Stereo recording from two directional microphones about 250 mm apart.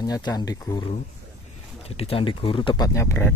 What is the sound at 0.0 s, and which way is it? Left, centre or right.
Speech, centre.